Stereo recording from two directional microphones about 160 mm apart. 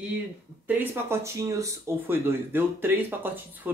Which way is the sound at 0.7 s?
15° right (ahead or behind).